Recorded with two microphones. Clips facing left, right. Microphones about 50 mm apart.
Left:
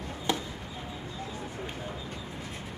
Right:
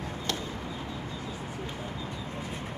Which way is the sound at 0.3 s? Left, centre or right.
Centre.